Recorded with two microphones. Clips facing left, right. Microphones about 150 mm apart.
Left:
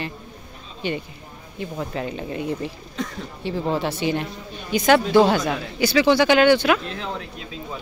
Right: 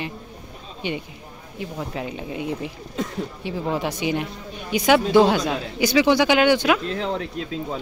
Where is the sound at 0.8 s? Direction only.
15° right (ahead or behind).